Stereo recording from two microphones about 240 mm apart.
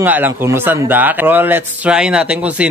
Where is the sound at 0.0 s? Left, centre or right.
Centre.